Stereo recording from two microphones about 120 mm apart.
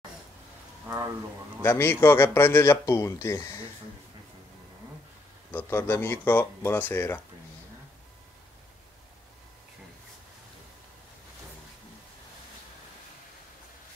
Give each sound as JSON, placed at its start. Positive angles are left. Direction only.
{"t": 1.6, "sound": "a man's voice", "side_deg": 20}
{"t": 5.5, "sound": "a man's voice", "side_deg": 20}